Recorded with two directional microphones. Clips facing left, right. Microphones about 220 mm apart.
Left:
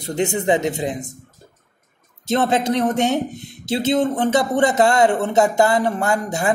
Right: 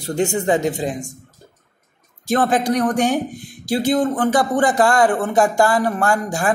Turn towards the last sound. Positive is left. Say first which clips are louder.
# right 1 dB
turn(degrees=20)  # may be behind; listen again after turning